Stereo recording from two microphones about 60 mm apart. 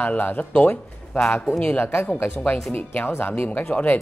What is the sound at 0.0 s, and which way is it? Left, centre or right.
Speech, left.